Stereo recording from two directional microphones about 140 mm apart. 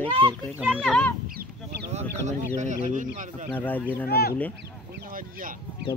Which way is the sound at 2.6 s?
65° right (ahead or behind).